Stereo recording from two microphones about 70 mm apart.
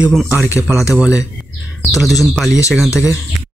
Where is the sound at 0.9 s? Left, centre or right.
Centre.